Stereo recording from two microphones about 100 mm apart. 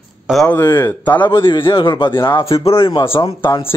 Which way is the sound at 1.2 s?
55° left (ahead or behind).